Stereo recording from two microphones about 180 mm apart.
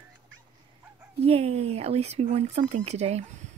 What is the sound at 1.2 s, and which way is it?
Speech, 35° right (ahead or behind).